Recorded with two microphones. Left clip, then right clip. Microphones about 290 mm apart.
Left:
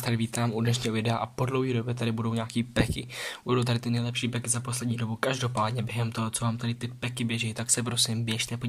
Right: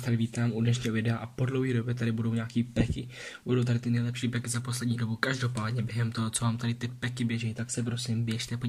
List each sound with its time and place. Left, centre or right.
0.7 s speech: centre